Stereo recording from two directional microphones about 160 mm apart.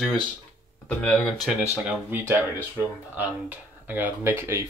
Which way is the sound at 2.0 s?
15° right (ahead or behind).